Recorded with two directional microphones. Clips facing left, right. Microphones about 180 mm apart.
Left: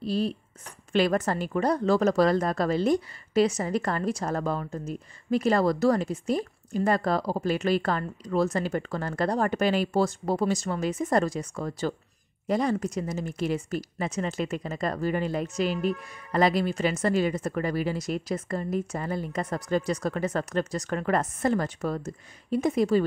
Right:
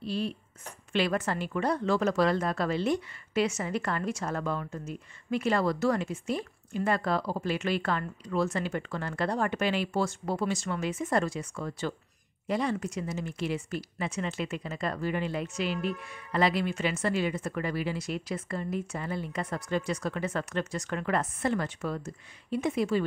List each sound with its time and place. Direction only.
0.0 s a woman's voice: 40° left (ahead or behind)